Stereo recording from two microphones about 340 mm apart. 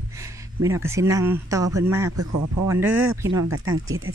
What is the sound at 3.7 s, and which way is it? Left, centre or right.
Speech, right.